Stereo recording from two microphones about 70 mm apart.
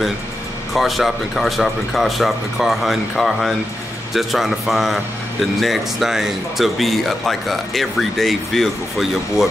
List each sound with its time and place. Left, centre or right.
0.7 s speech: centre